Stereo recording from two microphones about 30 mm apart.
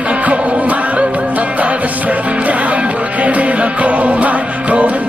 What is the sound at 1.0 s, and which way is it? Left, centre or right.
Music, right.